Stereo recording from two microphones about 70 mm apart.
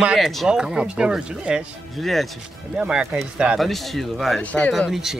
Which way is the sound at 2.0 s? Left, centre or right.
Centre.